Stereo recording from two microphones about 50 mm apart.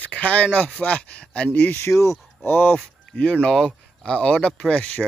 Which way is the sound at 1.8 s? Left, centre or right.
Left.